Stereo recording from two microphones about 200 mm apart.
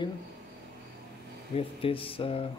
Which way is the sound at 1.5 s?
30° left (ahead or behind).